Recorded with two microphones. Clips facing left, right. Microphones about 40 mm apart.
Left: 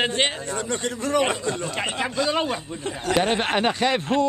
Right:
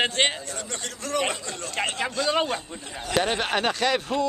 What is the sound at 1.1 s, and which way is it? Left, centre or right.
Speech, centre.